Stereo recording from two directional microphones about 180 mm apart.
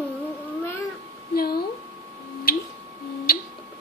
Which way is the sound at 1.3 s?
60° left (ahead or behind).